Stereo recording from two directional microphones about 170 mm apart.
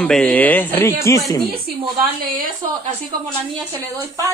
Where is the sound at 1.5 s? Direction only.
65° right (ahead or behind).